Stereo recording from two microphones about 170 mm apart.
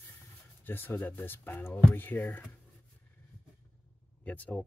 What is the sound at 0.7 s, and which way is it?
Speech, 10° left (ahead or behind).